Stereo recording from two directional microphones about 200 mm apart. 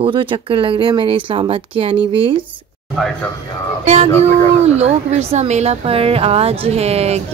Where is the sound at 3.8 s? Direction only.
30° right (ahead or behind).